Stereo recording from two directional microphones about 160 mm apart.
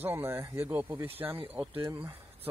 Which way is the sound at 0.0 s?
15° right (ahead or behind).